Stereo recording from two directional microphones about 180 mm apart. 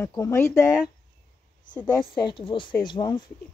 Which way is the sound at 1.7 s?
10° left (ahead or behind).